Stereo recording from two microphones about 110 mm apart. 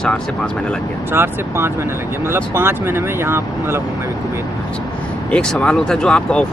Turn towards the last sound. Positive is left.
turn(degrees=10)  # may be behind; listen again after turning